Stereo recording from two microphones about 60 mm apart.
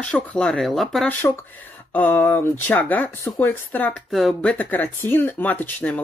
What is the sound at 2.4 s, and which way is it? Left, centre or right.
Speech, left.